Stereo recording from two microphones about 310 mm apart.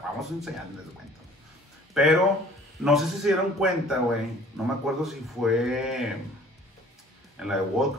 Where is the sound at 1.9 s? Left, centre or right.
Centre.